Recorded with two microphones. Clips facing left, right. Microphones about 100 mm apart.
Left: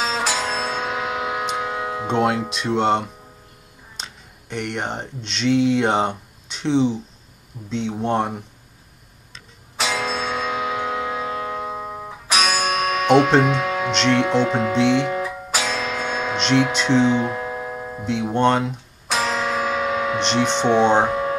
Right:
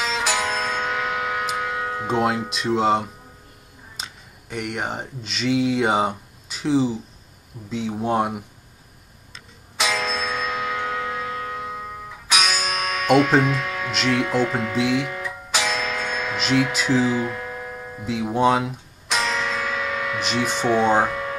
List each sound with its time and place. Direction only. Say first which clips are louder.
0.0 s music: left 1 dB; 20° left (ahead or behind)
2.0 s speech: left 2 dB; centre (ahead or behind)
9.8 s music: left 1 dB; 25° left (ahead or behind)
13.4 s speech: left 3 dB; 30° left (ahead or behind)
13.9 s speech: left 3 dB; 5° right (ahead or behind)
14.2 s speech: left 3 dB; 30° left (ahead or behind)
14.8 s speech: left 3 dB; 5° right (ahead or behind)
15.0 s music: left 6 dB; 30° left (ahead or behind)
16.3 s speech: left 2 dB; 5° right (ahead or behind)
17.0 s music: left 3 dB; 30° left (ahead or behind)
18.3 s speech: even; 5° right (ahead or behind)
19.1 s music: left 2 dB; 30° left (ahead or behind)
20.3 s speech: left 3 dB; 30° left (ahead or behind)
21.0 s music: left 3 dB; 30° left (ahead or behind)